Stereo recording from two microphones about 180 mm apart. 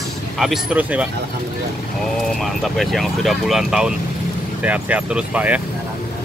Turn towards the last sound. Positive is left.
turn(degrees=-5)  # may be behind; listen again after turning